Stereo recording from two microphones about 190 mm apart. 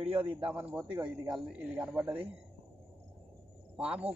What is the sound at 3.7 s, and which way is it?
Speech, 5° right (ahead or behind).